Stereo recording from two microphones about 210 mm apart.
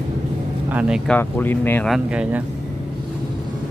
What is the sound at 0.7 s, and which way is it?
Speech, 5° right (ahead or behind).